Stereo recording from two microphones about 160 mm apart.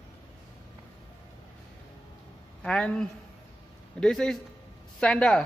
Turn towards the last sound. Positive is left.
turn(degrees=5)  # may be behind; listen again after turning